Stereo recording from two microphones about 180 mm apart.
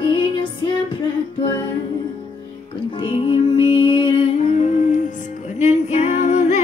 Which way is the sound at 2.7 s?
30° left (ahead or behind).